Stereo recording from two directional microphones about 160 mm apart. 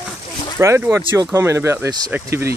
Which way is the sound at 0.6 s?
15° right (ahead or behind).